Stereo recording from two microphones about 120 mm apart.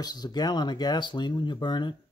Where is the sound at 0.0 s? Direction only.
35° left (ahead or behind).